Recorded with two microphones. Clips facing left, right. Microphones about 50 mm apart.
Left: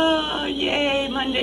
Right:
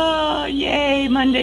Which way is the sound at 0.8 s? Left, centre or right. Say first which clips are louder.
Right 4 dB; right.